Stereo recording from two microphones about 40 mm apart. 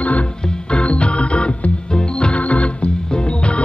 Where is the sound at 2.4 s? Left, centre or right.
Left.